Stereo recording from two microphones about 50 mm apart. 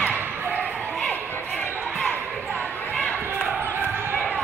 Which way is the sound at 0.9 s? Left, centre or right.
Left.